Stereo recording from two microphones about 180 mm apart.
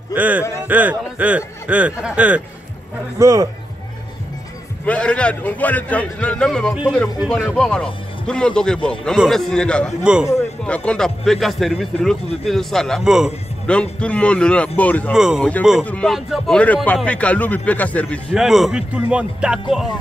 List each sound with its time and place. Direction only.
0.1 s speech: 10° right (ahead or behind)
3.2 s speech: 15° right (ahead or behind)
4.8 s a man's voice: 5° left (ahead or behind)
10.1 s a man's voice: 5° right (ahead or behind)
10.6 s a man's voice: 5° left (ahead or behind)
15.1 s a man's voice: 5° right (ahead or behind)